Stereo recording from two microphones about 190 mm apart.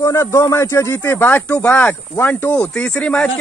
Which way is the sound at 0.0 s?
15° left (ahead or behind).